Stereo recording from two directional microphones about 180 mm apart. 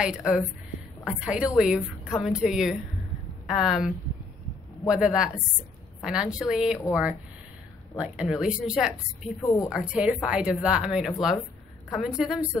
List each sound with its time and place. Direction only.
0.0 s a woman's voice: 5° right (ahead or behind)
8.0 s a woman's voice: 5° right (ahead or behind)
9.4 s a woman's voice: 15° left (ahead or behind)
9.7 s a woman's voice: 5° right (ahead or behind)